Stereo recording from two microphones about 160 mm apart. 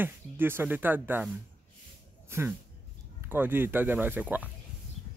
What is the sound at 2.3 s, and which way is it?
Speech, 15° right (ahead or behind).